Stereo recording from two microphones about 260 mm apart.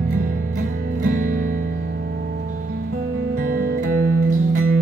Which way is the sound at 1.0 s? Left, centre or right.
Right.